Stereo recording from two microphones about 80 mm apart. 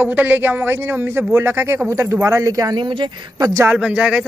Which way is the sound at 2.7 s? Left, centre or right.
Right.